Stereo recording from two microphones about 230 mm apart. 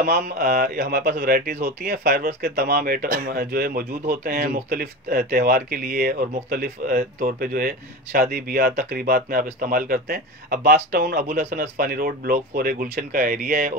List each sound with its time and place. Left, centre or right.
0.0 s speech: right